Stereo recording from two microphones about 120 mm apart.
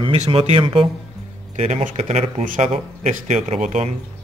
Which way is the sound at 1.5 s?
80° right.